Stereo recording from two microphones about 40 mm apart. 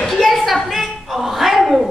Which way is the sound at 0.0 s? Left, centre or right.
Centre.